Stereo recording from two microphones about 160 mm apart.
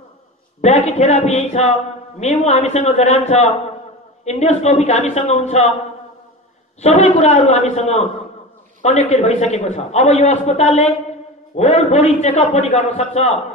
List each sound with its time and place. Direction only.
0.6 s a man's voice: 45° left (ahead or behind)
6.8 s a man's voice: 45° left (ahead or behind)